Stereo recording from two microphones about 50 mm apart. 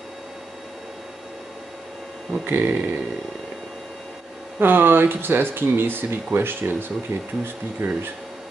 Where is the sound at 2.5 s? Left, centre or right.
Right.